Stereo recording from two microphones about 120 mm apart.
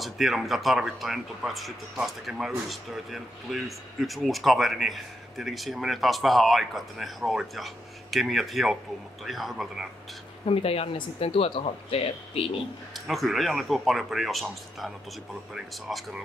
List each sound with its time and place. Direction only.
0.0 s speech: centre (ahead or behind)
10.4 s speech: 55° left (ahead or behind)
12.9 s speech: centre (ahead or behind)